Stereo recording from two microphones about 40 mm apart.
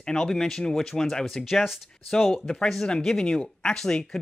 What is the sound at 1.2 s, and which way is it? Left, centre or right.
Speech, centre.